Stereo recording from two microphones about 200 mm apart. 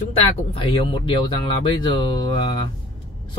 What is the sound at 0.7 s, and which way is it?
Speech, 25° left (ahead or behind).